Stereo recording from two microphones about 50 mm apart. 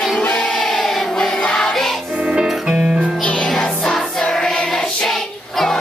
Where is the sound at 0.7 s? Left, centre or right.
Centre.